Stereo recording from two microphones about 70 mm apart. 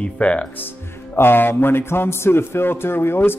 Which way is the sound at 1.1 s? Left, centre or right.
Left.